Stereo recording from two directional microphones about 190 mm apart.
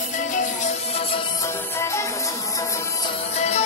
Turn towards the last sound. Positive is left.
turn(degrees=35)  # may be behind; listen again after turning